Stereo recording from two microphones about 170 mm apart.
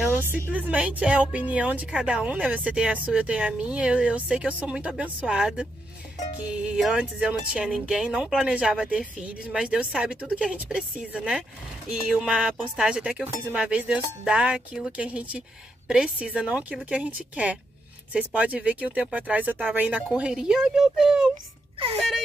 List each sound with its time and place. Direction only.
0.3 s speech: 10° right (ahead or behind)
21.7 s speech: 35° right (ahead or behind)